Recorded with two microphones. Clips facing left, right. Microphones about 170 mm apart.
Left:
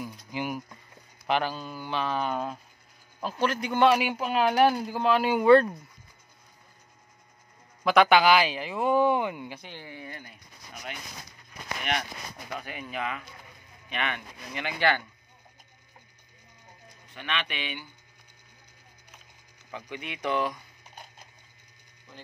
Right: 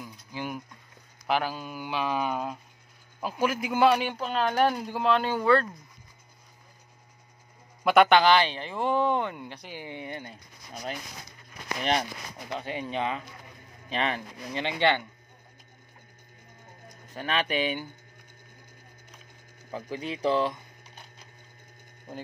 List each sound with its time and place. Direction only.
0.0 s mechanisms: 10° left (ahead or behind)
1.2 s speech: 5° right (ahead or behind)
4.0 s speech: 10° left (ahead or behind)
7.8 s speech: centre (ahead or behind)
9.8 s speech: 20° right (ahead or behind)
16.9 s speech: 40° right (ahead or behind)
19.7 s speech: 35° right (ahead or behind)
22.1 s speech: 50° right (ahead or behind)